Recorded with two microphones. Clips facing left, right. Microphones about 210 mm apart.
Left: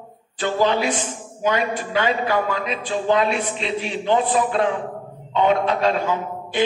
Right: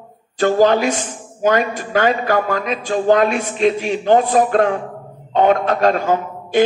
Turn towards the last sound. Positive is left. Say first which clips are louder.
# right 7 dB
turn(degrees=-45)  # may be behind; listen again after turning